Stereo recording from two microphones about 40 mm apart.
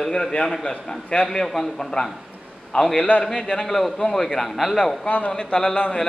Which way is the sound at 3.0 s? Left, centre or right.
Left.